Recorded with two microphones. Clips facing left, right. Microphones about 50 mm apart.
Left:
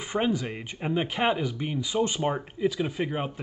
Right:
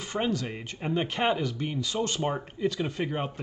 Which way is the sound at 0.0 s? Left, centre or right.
Centre.